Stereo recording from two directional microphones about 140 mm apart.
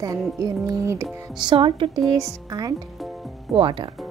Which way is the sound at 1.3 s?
35° right (ahead or behind).